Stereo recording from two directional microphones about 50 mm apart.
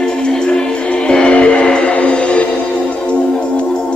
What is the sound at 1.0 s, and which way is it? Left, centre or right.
Music, centre.